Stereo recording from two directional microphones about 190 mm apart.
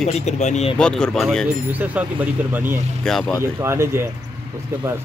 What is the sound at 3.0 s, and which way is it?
Speech, centre (ahead or behind).